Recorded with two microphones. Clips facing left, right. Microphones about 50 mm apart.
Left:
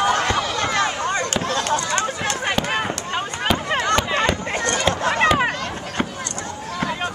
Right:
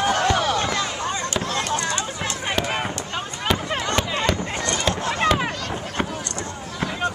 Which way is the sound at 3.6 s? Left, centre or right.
Left.